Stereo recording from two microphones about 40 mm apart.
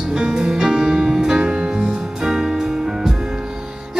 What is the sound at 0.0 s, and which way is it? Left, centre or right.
Music, centre.